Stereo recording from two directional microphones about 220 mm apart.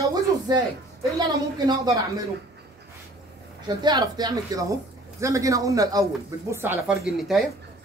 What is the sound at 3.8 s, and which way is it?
A woman's voice, 20° right (ahead or behind).